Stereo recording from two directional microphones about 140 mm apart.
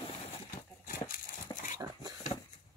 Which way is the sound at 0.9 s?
80° left.